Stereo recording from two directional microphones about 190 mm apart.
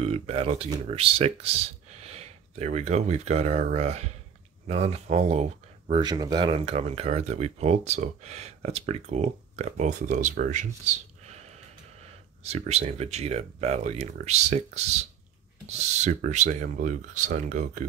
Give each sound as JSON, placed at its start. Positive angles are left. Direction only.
{"t": 0.0, "sound": "speech", "side_deg": -30}
{"t": 12.4, "sound": "speech", "side_deg": -35}